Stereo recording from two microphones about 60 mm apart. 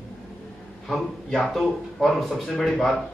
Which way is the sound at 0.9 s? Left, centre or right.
Centre.